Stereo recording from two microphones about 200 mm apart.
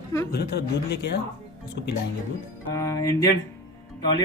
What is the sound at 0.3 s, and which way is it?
Speech, 55° left (ahead or behind).